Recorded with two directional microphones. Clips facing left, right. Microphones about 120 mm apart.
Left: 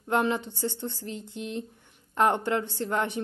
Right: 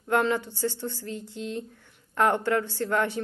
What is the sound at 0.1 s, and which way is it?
Speech, 20° left (ahead or behind).